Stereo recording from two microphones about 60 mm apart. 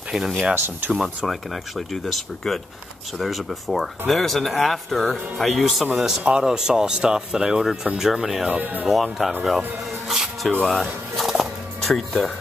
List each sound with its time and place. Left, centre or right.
0.1 s speech: centre
0.6 s speech: right
0.9 s speech: centre
8.5 s speech: right
8.8 s speech: centre
10.0 s music: centre